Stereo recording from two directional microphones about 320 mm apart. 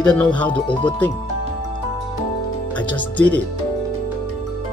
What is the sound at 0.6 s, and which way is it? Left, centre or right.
Speech, centre.